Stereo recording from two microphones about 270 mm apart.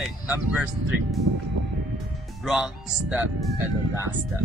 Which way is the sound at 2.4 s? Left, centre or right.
Centre.